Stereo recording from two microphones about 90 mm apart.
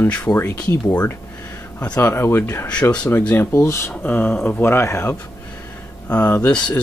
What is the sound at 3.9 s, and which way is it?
Speech, 20° left (ahead or behind).